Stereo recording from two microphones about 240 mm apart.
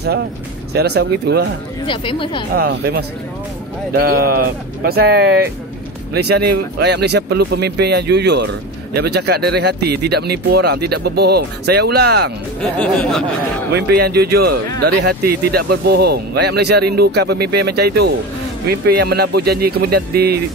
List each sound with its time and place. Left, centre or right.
0.7 s speech: right
1.9 s speech: left
2.5 s speech: right
12.7 s speech: centre
13.7 s speech: right